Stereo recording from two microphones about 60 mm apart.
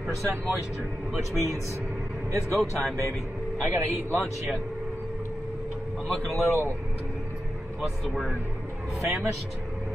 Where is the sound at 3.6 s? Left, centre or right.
Right.